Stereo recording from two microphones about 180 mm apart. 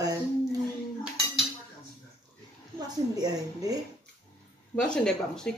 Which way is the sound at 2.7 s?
20° right (ahead or behind).